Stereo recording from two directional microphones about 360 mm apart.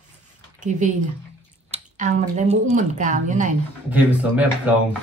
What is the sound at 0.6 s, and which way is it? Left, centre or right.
Speech, right.